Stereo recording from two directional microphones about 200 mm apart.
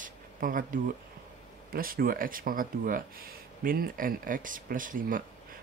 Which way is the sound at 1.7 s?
45° right (ahead or behind).